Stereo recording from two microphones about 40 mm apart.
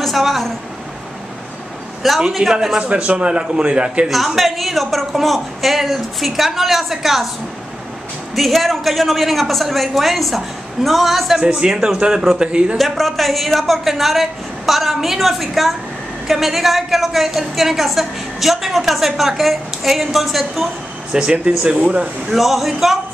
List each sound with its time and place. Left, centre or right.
0.0 s a woman's voice: centre
2.0 s a woman's voice: centre
2.4 s a man's voice: right
4.4 s a woman's voice: centre
8.4 s a woman's voice: centre
11.3 s a man's voice: centre
12.7 s a woman's voice: centre
21.1 s a man's voice: right
22.3 s a woman's voice: centre